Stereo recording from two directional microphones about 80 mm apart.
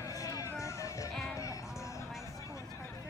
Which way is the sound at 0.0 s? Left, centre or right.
Left.